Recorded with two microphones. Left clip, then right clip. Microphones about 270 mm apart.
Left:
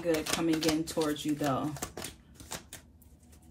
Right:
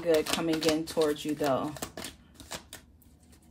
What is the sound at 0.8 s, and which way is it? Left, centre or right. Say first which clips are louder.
Speech: right 3 dB; right.